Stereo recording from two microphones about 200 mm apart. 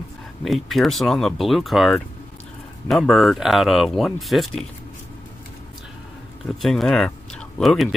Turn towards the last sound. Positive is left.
turn(degrees=0)  # may be behind; listen again after turning